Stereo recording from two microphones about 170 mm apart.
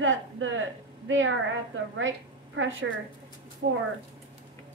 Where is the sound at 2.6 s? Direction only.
90° right.